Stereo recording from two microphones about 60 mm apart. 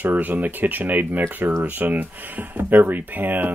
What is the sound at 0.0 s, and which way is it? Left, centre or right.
Speech, right.